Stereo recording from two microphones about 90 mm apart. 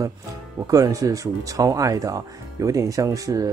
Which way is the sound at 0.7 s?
40° right (ahead or behind).